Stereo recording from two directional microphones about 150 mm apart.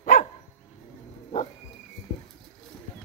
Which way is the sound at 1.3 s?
45° left (ahead or behind).